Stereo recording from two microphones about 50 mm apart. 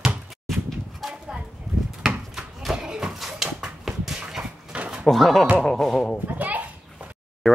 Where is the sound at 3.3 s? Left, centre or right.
Centre.